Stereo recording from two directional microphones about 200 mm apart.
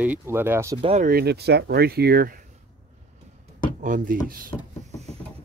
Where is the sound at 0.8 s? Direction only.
35° right (ahead or behind).